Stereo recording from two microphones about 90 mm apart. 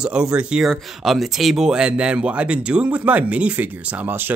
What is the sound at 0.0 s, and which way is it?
Speech, 10° right (ahead or behind).